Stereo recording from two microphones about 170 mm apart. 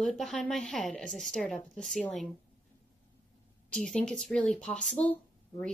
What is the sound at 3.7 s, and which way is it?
A woman's voice, 5° left (ahead or behind).